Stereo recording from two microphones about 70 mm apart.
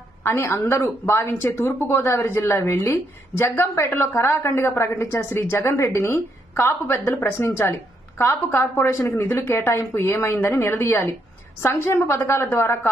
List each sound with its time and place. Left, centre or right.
0.2 s speech: left